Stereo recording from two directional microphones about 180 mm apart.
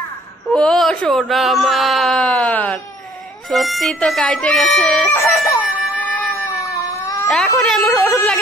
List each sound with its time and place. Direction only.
0.5 s speech: 5° left (ahead or behind)
5.1 s a sound: 15° left (ahead or behind)
6.1 s cat: 15° left (ahead or behind)
7.2 s speech: centre (ahead or behind)